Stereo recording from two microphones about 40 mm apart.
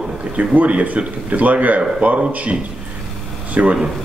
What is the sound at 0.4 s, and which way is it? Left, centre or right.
Speech, right.